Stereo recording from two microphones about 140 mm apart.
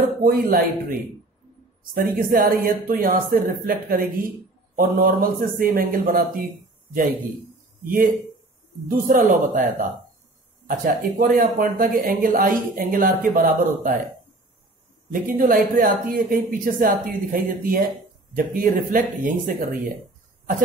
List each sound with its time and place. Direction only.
0.2 s speech: 90° right
2.0 s speech: 90° right
6.9 s a man's voice: 75° right (ahead or behind)
8.8 s speech: 80° right
15.2 s speech: 85° right
18.3 s speech: 80° right